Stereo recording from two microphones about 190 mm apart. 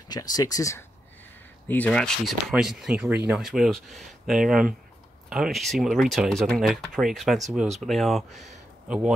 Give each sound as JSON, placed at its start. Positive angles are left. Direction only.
{"t": 0.1, "sound": "speech", "side_deg": 20}
{"t": 1.7, "sound": "speech", "side_deg": 5}